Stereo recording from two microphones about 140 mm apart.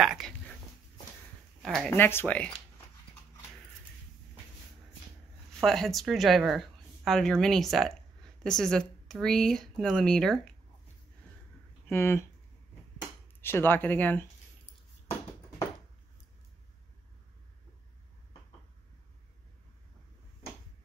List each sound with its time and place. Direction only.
0.0 s a sound: 5° right (ahead or behind)
1.6 s speech: 5° left (ahead or behind)
2.0 s speech: 15° left (ahead or behind)
5.5 s a woman's voice: 5° left (ahead or behind)
11.9 s speech: 20° left (ahead or behind)
13.4 s speech: 15° left (ahead or behind)